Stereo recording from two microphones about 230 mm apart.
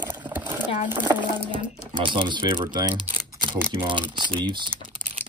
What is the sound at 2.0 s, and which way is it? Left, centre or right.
Speech, right.